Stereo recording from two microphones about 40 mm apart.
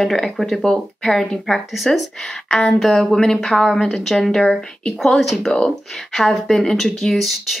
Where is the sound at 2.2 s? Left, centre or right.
Centre.